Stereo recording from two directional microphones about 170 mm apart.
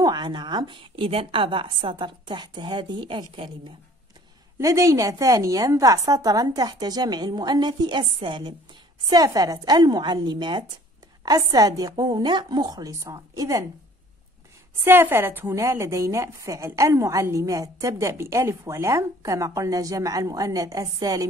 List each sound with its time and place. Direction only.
0.0 s a woman's voice: 25° right (ahead or behind)
4.6 s a woman's voice: 20° right (ahead or behind)
14.9 s a woman's voice: 15° right (ahead or behind)